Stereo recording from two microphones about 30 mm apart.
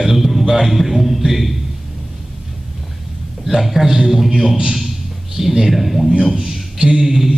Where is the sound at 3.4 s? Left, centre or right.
Centre.